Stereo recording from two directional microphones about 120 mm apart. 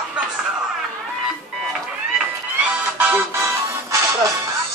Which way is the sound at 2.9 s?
10° right (ahead or behind).